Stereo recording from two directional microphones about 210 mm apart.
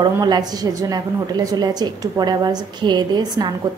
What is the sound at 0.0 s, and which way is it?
A woman's voice, 20° right (ahead or behind).